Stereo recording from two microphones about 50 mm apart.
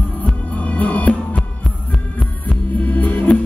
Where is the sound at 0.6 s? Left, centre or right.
Left.